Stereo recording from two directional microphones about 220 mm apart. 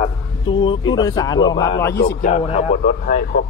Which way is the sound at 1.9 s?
45° left (ahead or behind).